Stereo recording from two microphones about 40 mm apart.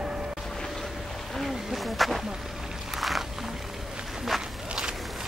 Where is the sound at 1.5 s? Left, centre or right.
Centre.